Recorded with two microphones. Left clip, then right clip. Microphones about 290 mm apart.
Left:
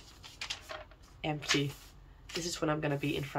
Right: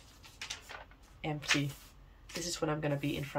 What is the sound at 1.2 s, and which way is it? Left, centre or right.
Speech, centre.